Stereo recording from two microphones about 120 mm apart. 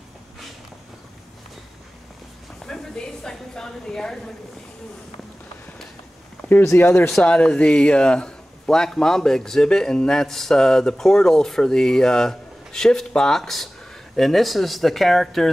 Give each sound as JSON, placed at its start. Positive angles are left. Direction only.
{"t": 2.7, "sound": "a sound", "side_deg": 5}
{"t": 3.3, "sound": "a woman's voice", "side_deg": 5}
{"t": 6.6, "sound": "speech", "side_deg": 20}